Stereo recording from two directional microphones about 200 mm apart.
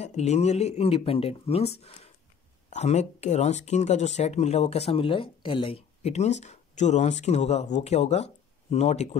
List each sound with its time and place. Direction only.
0.0 s speech: 35° left (ahead or behind)
2.7 s speech: 35° left (ahead or behind)